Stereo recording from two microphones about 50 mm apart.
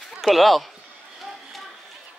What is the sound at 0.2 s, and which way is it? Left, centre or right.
Speech, centre.